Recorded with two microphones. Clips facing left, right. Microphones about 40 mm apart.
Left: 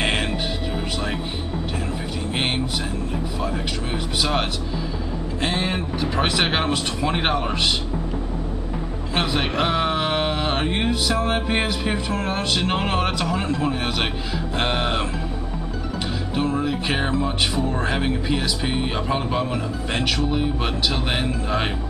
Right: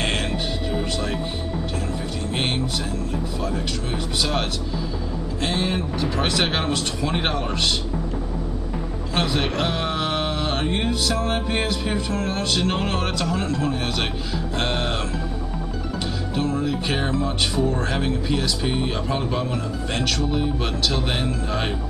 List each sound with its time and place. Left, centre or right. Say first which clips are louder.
5.4 s speech: even; centre
9.1 s speech: even; centre
16.3 s speech: left 1 dB; centre